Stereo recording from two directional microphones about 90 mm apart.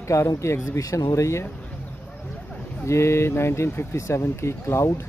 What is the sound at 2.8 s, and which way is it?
Speech, 30° left (ahead or behind).